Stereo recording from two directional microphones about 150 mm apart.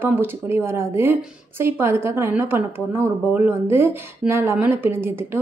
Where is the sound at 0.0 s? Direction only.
15° right (ahead or behind).